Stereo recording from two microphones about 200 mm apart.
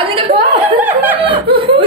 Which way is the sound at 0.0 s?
25° right (ahead or behind).